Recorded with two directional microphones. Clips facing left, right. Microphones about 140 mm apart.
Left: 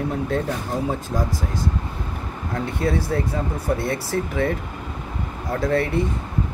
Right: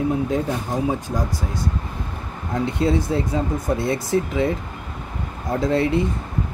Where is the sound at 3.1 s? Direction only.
20° right (ahead or behind).